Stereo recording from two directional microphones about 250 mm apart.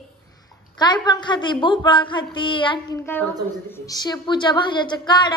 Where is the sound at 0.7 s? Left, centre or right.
Centre.